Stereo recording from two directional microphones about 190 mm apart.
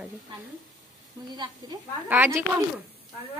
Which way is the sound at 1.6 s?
25° right (ahead or behind).